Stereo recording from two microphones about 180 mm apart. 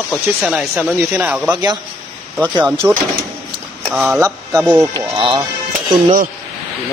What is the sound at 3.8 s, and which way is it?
Speech, 5° right (ahead or behind).